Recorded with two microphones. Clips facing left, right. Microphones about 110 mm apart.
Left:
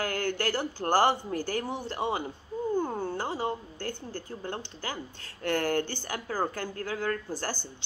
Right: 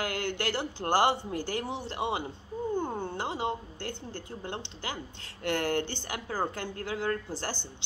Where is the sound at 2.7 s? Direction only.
20° right (ahead or behind).